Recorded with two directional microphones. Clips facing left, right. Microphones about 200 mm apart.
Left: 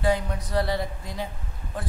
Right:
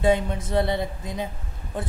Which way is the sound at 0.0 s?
25° right (ahead or behind).